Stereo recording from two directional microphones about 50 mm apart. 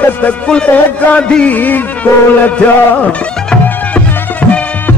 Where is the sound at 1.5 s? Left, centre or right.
Left.